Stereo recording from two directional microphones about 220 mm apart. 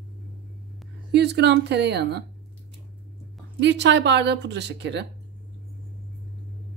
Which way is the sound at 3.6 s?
50° right (ahead or behind).